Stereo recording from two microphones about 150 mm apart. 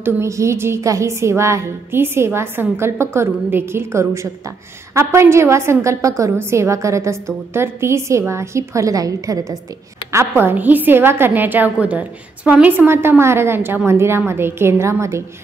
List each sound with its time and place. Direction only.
0.0 s a woman's voice: 20° right (ahead or behind)